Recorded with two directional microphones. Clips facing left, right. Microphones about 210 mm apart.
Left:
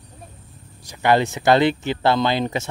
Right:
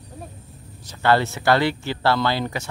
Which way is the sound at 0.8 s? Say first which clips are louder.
Left 1 dB; 15° left (ahead or behind).